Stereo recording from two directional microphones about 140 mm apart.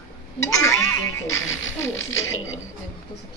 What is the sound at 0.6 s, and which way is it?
Music, 20° left (ahead or behind).